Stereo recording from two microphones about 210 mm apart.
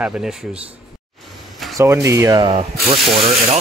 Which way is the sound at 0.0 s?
5° right (ahead or behind).